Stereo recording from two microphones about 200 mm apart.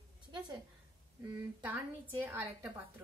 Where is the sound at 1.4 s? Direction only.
10° right (ahead or behind).